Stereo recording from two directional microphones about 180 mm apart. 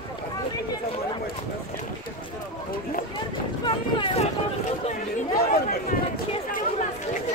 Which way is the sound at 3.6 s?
30° left (ahead or behind).